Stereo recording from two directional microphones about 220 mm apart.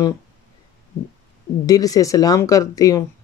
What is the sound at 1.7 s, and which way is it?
Speech, 15° left (ahead or behind).